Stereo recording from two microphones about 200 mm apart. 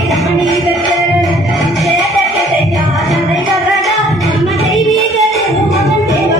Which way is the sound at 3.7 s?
Centre (ahead or behind).